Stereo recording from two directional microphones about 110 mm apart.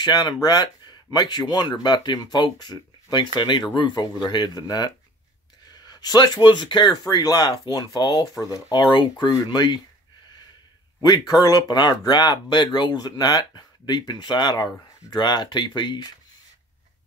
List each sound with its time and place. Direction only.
0.0 s speech: 40° left (ahead or behind)
11.0 s speech: 40° left (ahead or behind)